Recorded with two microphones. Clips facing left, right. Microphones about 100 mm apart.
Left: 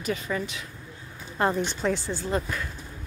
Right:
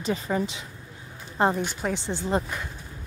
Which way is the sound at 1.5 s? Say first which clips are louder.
Left 2 dB; 10° right (ahead or behind).